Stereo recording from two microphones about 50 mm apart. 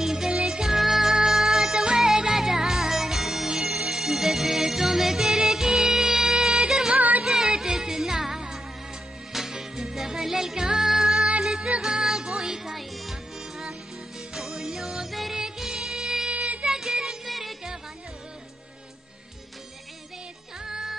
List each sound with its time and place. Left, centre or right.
0.0 s music: centre
7.0 s music: right
7.2 s music: centre
15.4 s music: centre
16.3 s music: right
16.7 s music: centre
17.3 s music: centre
20.6 s music: centre